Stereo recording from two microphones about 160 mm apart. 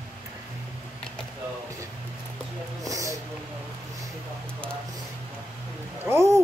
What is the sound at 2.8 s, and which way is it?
Speech, 20° right (ahead or behind).